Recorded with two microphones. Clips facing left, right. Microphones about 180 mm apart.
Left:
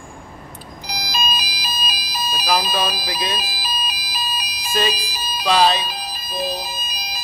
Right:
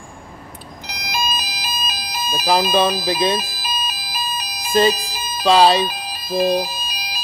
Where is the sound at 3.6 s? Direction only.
50° right (ahead or behind).